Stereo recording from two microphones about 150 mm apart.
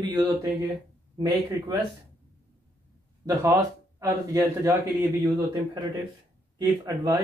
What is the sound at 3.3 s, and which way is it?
Speech, 20° right (ahead or behind).